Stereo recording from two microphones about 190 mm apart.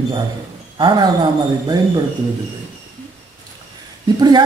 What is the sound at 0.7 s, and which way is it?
A woman's voice, 25° right (ahead or behind).